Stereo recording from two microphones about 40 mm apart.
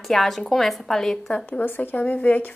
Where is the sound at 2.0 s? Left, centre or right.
Left.